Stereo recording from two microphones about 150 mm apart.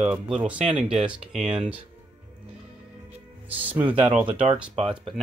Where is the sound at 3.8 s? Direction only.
35° right (ahead or behind).